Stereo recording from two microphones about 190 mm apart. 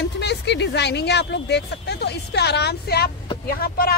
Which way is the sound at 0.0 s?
60° left (ahead or behind).